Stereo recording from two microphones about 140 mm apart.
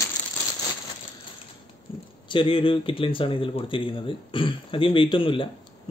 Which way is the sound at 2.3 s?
40° left (ahead or behind).